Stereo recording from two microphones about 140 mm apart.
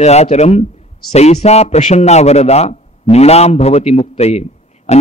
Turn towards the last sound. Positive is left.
turn(degrees=50)  # may be behind; listen again after turning